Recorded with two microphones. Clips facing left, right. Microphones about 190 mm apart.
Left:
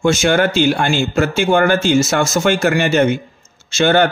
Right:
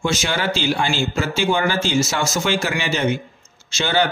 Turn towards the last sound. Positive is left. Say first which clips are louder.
# left 7 dB
turn(degrees=55)  # may be behind; listen again after turning